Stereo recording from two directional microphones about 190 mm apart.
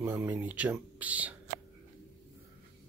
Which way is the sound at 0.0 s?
10° right (ahead or behind).